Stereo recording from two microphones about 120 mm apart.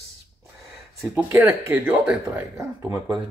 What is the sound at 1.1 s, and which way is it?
Speech, 20° right (ahead or behind).